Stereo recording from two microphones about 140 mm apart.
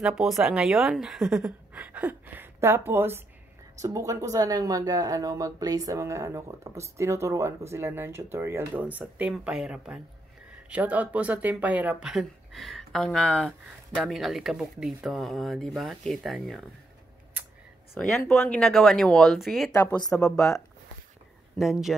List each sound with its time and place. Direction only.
0.0 s a woman's voice: 5° right (ahead or behind)
17.9 s speech: 5° left (ahead or behind)
19.7 s a woman's voice: 15° left (ahead or behind)
21.5 s speech: centre (ahead or behind)